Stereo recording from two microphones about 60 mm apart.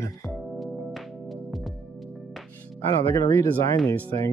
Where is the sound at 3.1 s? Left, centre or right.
Left.